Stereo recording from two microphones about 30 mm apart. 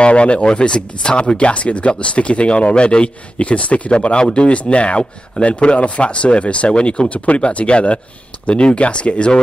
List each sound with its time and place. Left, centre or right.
0.0 s speech: left
1.5 s speech: left
3.4 s speech: left
3.9 s speech: left
4.5 s speech: left